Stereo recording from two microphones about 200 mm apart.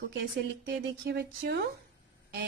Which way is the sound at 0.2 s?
60° right (ahead or behind).